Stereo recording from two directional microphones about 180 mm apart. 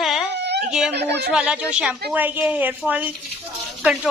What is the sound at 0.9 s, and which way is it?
Speech, 70° right (ahead or behind).